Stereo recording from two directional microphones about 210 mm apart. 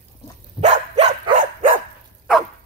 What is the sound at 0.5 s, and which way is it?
Dog, 30° right (ahead or behind).